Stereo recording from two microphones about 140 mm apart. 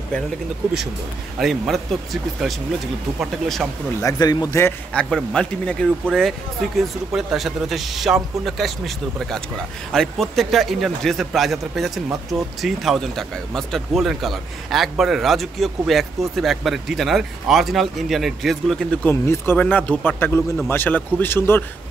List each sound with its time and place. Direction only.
1.4 s speech: centre (ahead or behind)
3.2 s speech: centre (ahead or behind)
4.0 s speech: 30° left (ahead or behind)
4.9 s a man's voice: 5° left (ahead or behind)